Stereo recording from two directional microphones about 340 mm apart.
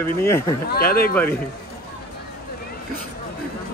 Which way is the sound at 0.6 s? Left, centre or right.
Left.